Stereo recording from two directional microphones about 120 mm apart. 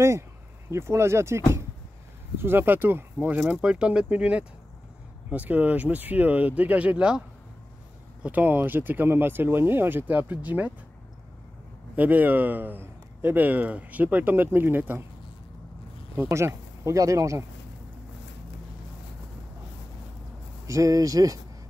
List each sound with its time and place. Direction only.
0.7 s a man's voice: 20° right (ahead or behind)
11.9 s a man's voice: 15° right (ahead or behind)
16.2 s speech: 20° right (ahead or behind)
20.6 s speech: 25° right (ahead or behind)